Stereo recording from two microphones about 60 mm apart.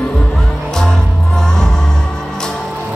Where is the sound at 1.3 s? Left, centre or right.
Centre.